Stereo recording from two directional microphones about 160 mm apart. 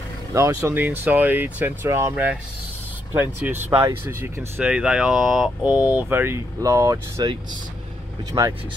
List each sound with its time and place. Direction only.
0.3 s speech: 20° right (ahead or behind)